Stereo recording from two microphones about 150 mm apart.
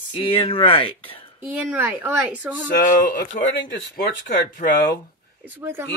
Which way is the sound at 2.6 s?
60° left (ahead or behind).